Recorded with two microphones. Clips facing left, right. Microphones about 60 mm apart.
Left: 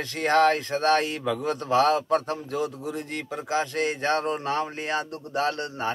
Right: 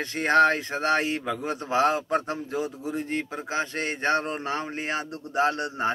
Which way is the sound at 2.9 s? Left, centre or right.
Centre.